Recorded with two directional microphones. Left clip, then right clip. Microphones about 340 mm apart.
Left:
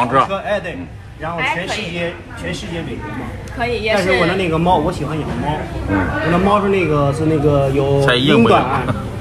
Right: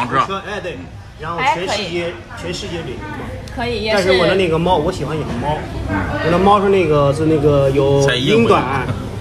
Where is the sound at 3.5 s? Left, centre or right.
Right.